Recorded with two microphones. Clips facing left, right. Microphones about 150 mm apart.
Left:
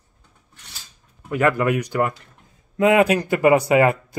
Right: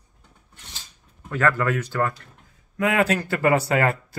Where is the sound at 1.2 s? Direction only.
15° left (ahead or behind).